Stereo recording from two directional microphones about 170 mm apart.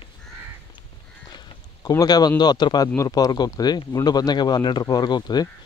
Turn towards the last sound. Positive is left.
turn(degrees=25)  # may be behind; listen again after turning